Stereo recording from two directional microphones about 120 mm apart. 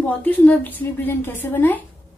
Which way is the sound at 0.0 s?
15° left (ahead or behind).